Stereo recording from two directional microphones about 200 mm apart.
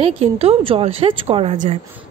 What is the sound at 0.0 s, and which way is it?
A woman's voice, 30° right (ahead or behind).